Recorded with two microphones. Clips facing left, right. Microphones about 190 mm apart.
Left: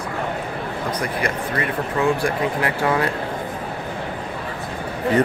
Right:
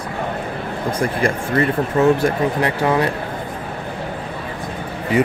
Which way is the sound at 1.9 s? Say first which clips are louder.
Right 5 dB; 25° right (ahead or behind).